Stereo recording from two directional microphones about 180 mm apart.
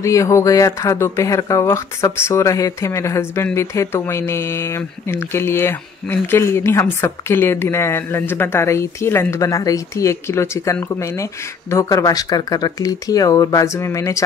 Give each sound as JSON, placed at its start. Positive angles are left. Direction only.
{"t": 0.0, "sound": "speech", "side_deg": 15}